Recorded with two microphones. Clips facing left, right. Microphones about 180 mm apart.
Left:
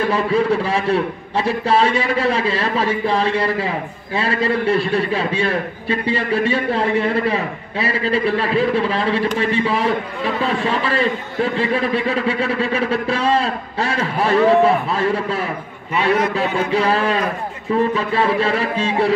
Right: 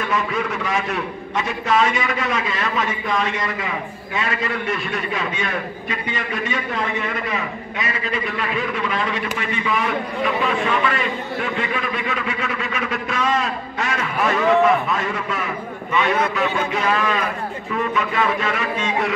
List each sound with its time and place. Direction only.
0.0 s a man's voice: 30° left (ahead or behind)